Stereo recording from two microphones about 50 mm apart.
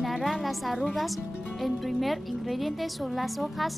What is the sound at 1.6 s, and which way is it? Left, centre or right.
A woman's voice, centre.